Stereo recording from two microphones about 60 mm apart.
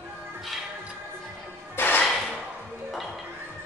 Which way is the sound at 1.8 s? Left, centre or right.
Left.